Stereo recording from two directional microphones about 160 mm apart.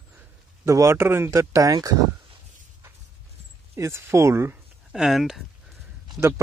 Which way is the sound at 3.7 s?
15° right (ahead or behind).